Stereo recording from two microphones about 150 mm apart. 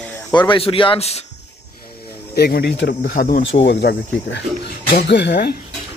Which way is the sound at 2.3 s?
90° left.